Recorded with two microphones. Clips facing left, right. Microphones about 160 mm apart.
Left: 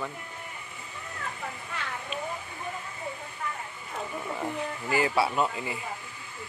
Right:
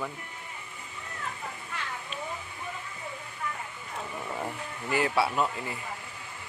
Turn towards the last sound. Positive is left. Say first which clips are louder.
# left 1 dB
turn(degrees=0)  # may be behind; listen again after turning